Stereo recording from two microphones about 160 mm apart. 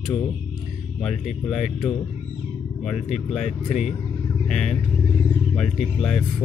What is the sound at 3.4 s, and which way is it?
Speech, 45° left (ahead or behind).